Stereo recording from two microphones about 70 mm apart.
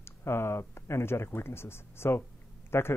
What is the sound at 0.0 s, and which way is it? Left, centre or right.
Speech, left.